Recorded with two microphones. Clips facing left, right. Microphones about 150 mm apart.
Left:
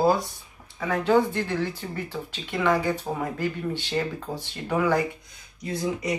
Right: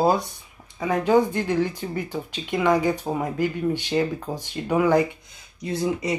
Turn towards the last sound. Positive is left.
turn(degrees=-25)  # may be behind; listen again after turning